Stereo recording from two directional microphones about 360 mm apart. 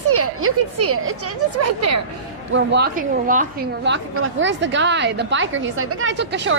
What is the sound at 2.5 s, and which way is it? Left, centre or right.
A woman's voice, right.